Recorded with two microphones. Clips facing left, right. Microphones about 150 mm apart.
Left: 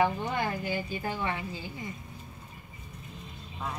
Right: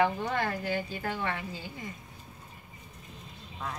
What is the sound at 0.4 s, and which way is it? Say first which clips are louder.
A woman's voice: even; 15° left (ahead or behind).